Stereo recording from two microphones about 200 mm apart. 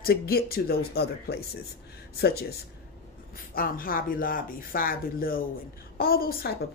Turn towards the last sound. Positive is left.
turn(degrees=50)  # may be behind; listen again after turning